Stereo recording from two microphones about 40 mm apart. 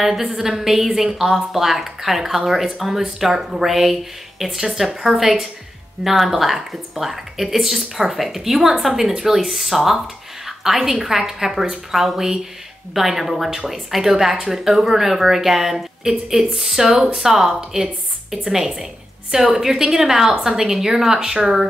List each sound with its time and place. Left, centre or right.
0.0 s a woman's voice: centre